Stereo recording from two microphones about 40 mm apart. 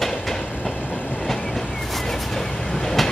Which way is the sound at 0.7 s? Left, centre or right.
Left.